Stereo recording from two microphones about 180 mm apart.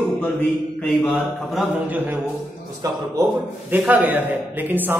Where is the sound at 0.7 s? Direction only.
10° left (ahead or behind).